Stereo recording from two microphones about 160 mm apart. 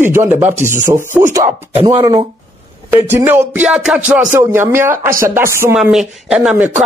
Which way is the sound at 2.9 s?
15° right (ahead or behind).